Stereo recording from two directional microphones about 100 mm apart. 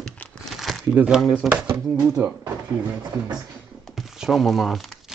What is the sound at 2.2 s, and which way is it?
Speech, 25° right (ahead or behind).